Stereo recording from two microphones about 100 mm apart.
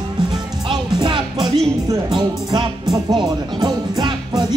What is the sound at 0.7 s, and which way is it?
Music, 55° right (ahead or behind).